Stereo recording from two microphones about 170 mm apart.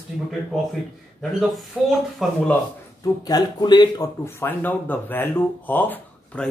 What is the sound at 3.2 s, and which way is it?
Speech, 25° left (ahead or behind).